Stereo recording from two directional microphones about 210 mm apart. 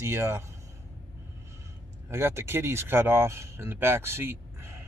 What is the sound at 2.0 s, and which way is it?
Speech, 10° right (ahead or behind).